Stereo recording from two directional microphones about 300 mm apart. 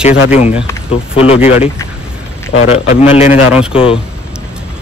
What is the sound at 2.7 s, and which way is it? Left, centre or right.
A man's voice, left.